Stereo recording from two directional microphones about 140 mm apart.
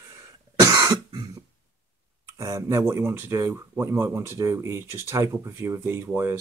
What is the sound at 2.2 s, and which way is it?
Speech, 20° right (ahead or behind).